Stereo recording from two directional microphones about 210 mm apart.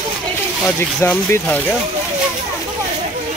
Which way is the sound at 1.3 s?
10° left (ahead or behind).